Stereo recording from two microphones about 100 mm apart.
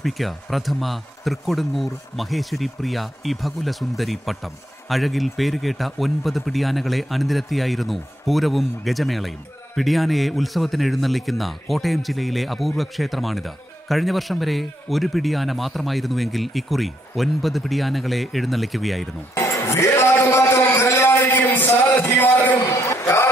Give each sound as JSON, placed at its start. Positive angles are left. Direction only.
{"t": 0.0, "sound": "speech", "side_deg": 0}
{"t": 19.3, "sound": "a sound", "side_deg": 30}
{"t": 22.6, "sound": "speech", "side_deg": 30}